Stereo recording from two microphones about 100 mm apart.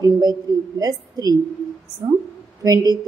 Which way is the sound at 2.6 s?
40° right (ahead or behind).